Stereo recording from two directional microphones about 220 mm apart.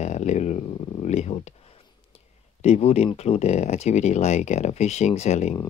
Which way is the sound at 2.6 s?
30° left (ahead or behind).